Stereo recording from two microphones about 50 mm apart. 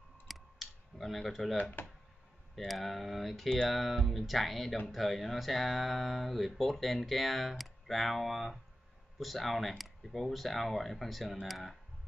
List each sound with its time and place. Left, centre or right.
0.3 s computer keyboard: centre
1.6 s speech: left
2.5 s speech: centre